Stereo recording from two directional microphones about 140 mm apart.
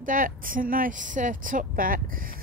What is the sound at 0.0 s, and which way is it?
Speech, 80° right.